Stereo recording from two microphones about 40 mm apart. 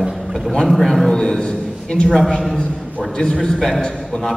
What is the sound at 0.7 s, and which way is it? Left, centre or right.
Speech, centre.